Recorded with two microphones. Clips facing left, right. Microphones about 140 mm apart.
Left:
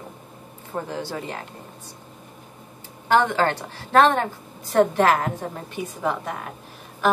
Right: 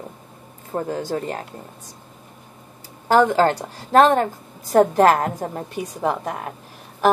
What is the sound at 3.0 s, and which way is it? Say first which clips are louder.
A woman's voice: right 4 dB; 40° right (ahead or behind).